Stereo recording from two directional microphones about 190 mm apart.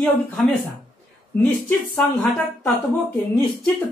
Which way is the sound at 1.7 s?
5° left (ahead or behind).